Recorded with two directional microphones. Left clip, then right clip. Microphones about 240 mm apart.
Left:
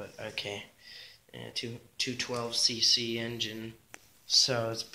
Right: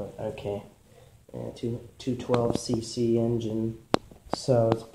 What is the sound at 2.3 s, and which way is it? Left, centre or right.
Speech, left.